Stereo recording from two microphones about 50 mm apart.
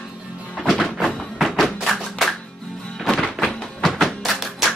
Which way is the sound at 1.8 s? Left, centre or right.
Centre.